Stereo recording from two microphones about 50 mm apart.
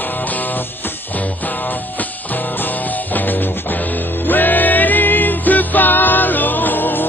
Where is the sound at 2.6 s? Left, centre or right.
Left.